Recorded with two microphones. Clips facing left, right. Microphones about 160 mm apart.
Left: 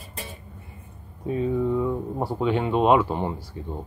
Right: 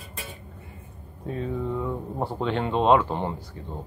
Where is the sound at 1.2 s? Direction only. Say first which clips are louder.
Left 6 dB; 5° left (ahead or behind).